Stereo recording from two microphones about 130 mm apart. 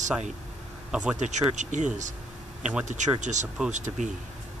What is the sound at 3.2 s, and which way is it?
Speech, 70° right (ahead or behind).